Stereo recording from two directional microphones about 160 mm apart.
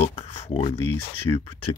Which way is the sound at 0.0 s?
40° left (ahead or behind).